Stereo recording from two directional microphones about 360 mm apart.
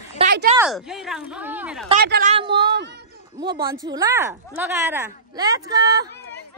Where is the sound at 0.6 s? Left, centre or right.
Centre.